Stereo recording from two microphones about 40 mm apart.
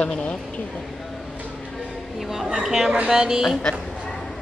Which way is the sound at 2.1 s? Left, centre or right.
Centre.